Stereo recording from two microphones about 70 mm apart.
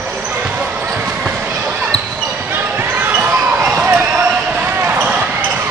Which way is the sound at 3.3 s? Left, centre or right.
Centre.